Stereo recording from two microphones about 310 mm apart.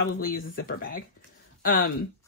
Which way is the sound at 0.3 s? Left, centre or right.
Left.